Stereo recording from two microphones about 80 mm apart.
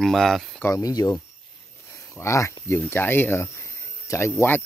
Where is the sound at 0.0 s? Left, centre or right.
Centre.